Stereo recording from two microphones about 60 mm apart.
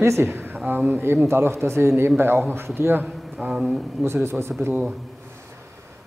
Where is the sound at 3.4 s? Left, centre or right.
Centre.